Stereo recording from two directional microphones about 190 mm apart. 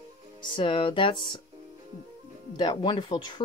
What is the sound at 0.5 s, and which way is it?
Speech, 25° left (ahead or behind).